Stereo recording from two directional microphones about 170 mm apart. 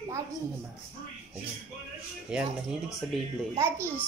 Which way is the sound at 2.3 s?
5° right (ahead or behind).